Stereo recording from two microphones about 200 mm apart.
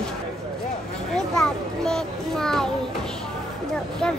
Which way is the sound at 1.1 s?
5° left (ahead or behind).